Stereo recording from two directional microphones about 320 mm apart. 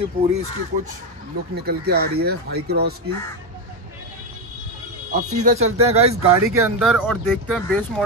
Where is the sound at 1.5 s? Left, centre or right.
Right.